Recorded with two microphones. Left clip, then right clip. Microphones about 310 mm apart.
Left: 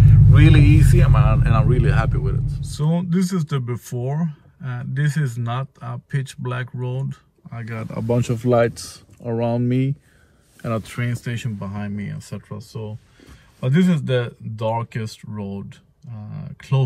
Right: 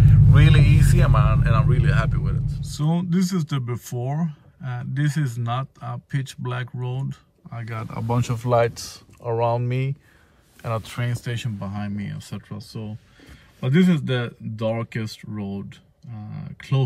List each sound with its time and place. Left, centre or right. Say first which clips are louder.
0.0 s a sound: left 3 dB; centre
0.8 s speech: left 1 dB; centre
10.8 s speech: left 2 dB; centre
13.6 s speech: even; centre